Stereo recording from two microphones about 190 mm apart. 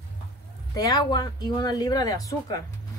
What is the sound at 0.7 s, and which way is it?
Speech, 20° left (ahead or behind).